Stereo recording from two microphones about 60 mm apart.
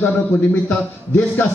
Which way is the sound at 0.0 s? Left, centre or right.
Left.